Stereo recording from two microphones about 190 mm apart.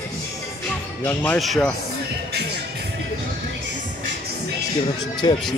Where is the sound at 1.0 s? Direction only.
10° left (ahead or behind).